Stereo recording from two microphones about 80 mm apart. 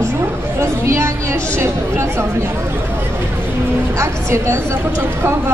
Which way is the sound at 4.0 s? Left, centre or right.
Right.